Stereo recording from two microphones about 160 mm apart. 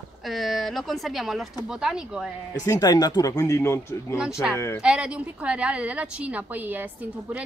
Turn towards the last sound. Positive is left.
turn(degrees=-10)  # may be behind; listen again after turning